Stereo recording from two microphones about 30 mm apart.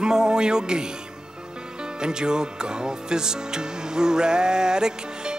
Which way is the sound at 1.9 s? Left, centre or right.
Right.